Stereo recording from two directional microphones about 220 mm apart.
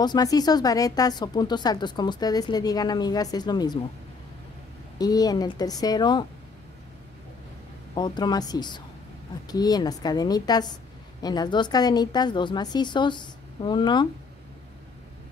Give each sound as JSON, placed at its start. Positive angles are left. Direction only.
{"t": 0.0, "sound": "speech", "side_deg": 15}
{"t": 4.9, "sound": "speech", "side_deg": 15}
{"t": 7.9, "sound": "a woman's voice", "side_deg": 20}